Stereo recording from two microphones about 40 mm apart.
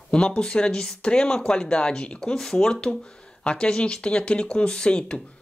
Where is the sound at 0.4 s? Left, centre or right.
Left.